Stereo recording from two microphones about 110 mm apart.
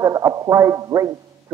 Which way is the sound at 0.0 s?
30° right (ahead or behind).